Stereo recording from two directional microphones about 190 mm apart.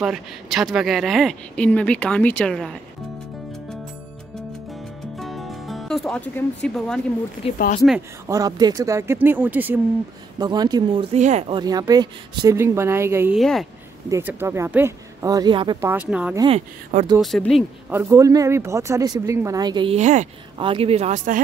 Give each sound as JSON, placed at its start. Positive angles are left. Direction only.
{"t": 0.0, "sound": "speech", "side_deg": 0}
{"t": 5.1, "sound": "music", "side_deg": 0}
{"t": 7.5, "sound": "speech", "side_deg": 50}
{"t": 8.3, "sound": "speech", "side_deg": -20}
{"t": 10.4, "sound": "speech", "side_deg": -20}
{"t": 13.4, "sound": "speech", "side_deg": 0}
{"t": 14.0, "sound": "speech", "side_deg": -15}
{"t": 15.9, "sound": "speech", "side_deg": -5}
{"t": 16.3, "sound": "speech", "side_deg": -30}
{"t": 17.2, "sound": "speech", "side_deg": 0}
{"t": 17.9, "sound": "speech", "side_deg": -15}
{"t": 20.5, "sound": "speech", "side_deg": -30}